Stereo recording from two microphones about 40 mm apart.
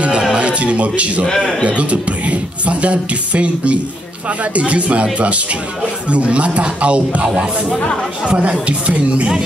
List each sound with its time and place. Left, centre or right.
0.3 s speech: right
7.2 s speech: centre
8.3 s speech: right